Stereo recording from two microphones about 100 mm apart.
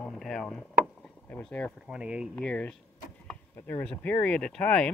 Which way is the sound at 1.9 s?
10° right (ahead or behind).